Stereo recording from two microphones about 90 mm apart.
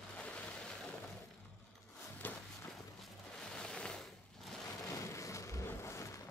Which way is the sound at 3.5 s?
10° left (ahead or behind).